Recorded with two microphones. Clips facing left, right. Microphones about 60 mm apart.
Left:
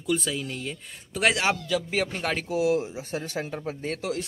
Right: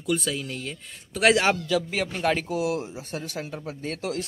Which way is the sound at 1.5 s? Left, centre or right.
Centre.